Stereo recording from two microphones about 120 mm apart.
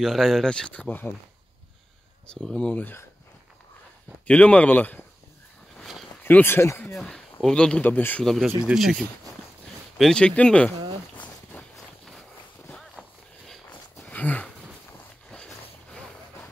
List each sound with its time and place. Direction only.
0.0 s speech: centre (ahead or behind)
2.2 s speech: 5° left (ahead or behind)
4.3 s speech: 10° left (ahead or behind)
5.8 s a sound: centre (ahead or behind)
6.2 s speech: 20° left (ahead or behind)
7.3 s speech: 5° left (ahead or behind)
8.6 s speech: centre (ahead or behind)
9.9 s speech: 5° left (ahead or behind)
11.5 s walk: centre (ahead or behind)
12.6 s run: 5° left (ahead or behind)
13.9 s a sound: 10° left (ahead or behind)